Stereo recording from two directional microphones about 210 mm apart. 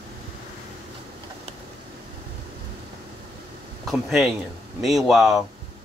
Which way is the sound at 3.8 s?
Centre (ahead or behind).